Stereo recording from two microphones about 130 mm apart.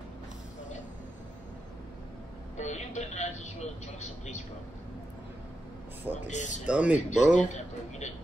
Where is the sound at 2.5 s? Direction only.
65° left (ahead or behind).